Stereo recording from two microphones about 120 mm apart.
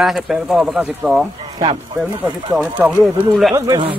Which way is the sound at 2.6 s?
5° right (ahead or behind).